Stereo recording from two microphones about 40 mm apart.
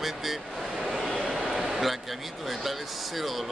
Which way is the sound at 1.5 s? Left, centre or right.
Centre.